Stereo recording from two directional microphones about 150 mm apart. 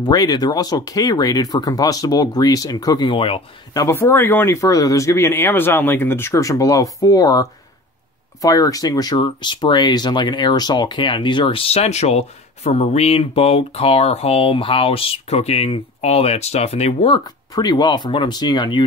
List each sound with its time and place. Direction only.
0.0 s speech: 25° left (ahead or behind)
3.7 s speech: 20° left (ahead or behind); by 17.2 s 40° left (ahead or behind)
17.2 s speech: 30° left (ahead or behind)